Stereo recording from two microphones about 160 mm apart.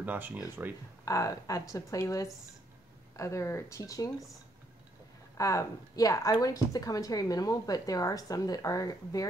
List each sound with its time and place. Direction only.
0.0 s speech: 10° right (ahead or behind)
1.0 s a woman's voice: 20° left (ahead or behind)
5.4 s a woman's voice: 20° left (ahead or behind)